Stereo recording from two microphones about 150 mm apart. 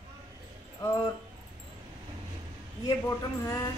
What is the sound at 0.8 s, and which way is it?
Speech, 20° left (ahead or behind).